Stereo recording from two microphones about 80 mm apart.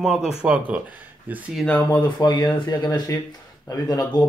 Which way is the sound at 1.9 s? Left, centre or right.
Left.